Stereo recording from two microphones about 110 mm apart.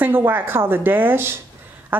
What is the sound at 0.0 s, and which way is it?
Speech, 20° right (ahead or behind).